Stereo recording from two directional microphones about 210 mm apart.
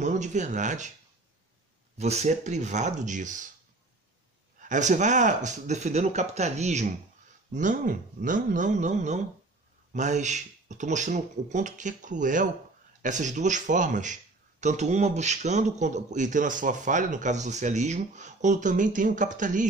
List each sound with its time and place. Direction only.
0.0 s speech: 35° right (ahead or behind)
2.0 s speech: 30° right (ahead or behind)
4.6 s speech: 35° right (ahead or behind)